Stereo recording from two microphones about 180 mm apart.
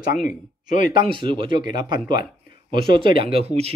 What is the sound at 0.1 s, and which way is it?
Speech, 50° left (ahead or behind).